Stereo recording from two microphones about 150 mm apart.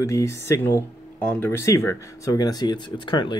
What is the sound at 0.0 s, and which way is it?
Speech, 20° left (ahead or behind).